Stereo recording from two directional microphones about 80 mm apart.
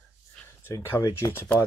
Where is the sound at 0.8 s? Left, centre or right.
Left.